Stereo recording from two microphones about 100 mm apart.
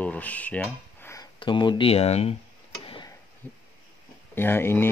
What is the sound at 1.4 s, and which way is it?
Speech, 50° left (ahead or behind).